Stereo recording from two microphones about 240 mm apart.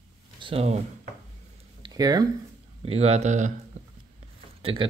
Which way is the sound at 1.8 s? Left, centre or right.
Centre.